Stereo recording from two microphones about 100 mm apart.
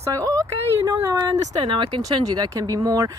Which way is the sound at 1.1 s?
50° right (ahead or behind).